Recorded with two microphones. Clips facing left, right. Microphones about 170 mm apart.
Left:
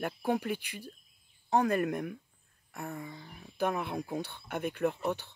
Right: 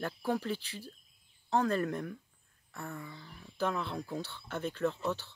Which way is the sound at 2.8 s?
35° left (ahead or behind).